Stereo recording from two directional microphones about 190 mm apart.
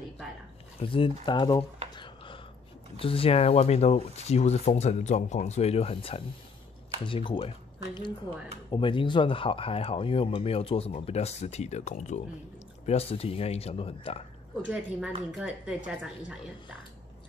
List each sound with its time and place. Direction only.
0.7 s speech: 30° left (ahead or behind)
2.0 s a sound: 25° left (ahead or behind)
3.0 s speech: 30° left (ahead or behind)
14.6 s a woman's voice: 5° right (ahead or behind)